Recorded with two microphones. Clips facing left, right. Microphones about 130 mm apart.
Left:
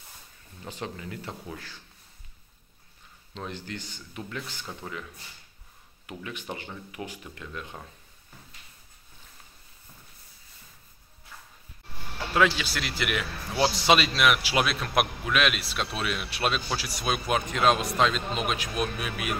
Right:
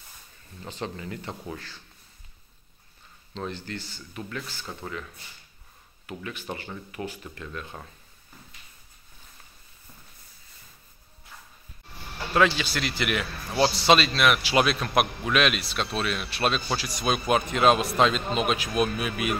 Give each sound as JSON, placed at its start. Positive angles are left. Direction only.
{"t": 0.7, "sound": "a man's voice", "side_deg": 10}
{"t": 3.3, "sound": "a man's voice", "side_deg": 10}
{"t": 6.0, "sound": "a man's voice", "side_deg": 15}
{"t": 12.4, "sound": "a man's voice", "side_deg": 5}